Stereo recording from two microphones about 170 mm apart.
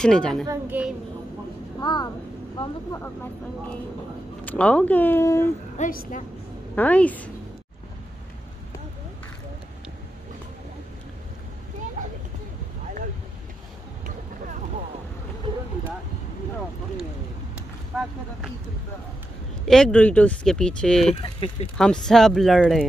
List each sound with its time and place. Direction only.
0.0 s speech: 5° left (ahead or behind)
0.5 s a woman's voice: 10° right (ahead or behind)
1.8 s a child's voice: 25° left (ahead or behind)
4.5 s speech: 5° left (ahead or behind)
5.8 s a woman's voice: 50° left (ahead or behind)
6.7 s speech: 10° left (ahead or behind)
17.9 s speech: centre (ahead or behind)
19.6 s speech: 5° left (ahead or behind)
21.2 s speech: 35° left (ahead or behind)
21.7 s speech: 5° left (ahead or behind)